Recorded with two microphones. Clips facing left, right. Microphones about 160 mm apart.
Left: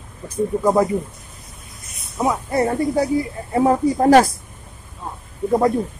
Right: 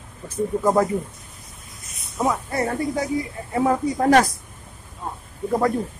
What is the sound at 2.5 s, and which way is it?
Speech, 30° left (ahead or behind).